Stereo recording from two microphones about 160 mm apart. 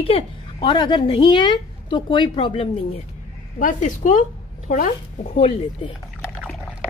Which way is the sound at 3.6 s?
55° left (ahead or behind).